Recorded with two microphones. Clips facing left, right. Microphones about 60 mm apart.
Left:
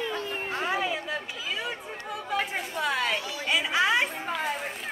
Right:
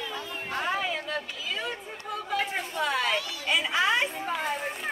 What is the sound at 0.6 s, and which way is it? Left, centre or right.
Speech, centre.